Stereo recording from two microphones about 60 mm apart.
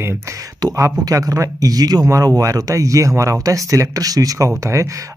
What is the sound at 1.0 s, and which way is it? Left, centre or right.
Speech, right.